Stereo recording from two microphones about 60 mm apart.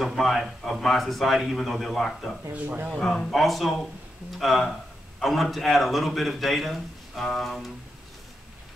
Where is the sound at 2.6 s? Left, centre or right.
Right.